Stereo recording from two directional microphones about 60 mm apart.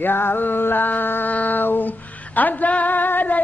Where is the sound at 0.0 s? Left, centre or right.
Left.